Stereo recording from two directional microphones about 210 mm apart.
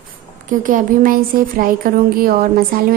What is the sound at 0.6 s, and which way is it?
Speech, 40° right (ahead or behind).